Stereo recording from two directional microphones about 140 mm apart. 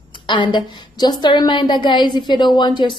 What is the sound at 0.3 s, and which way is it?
A woman's voice, 35° left (ahead or behind).